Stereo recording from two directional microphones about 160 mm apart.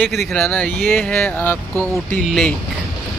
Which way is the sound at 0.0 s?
Centre (ahead or behind).